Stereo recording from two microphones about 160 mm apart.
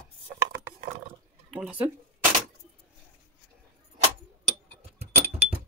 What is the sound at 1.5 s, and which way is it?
Speech, 5° right (ahead or behind).